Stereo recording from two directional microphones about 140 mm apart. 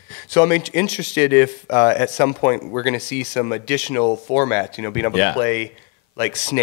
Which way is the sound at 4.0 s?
25° left (ahead or behind).